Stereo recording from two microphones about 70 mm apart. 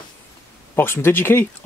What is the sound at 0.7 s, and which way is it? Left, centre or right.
Speech, left.